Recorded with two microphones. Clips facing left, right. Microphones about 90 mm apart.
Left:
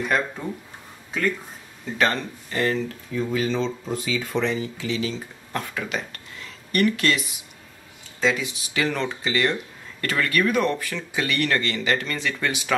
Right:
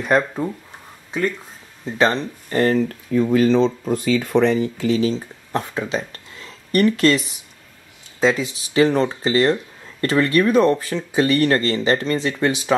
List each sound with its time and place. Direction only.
2.0 s speech: 30° right (ahead or behind)
2.5 s speech: 45° right (ahead or behind)
5.5 s speech: 30° right (ahead or behind)